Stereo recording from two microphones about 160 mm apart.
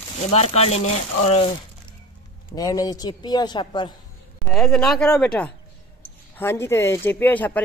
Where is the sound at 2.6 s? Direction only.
25° left (ahead or behind).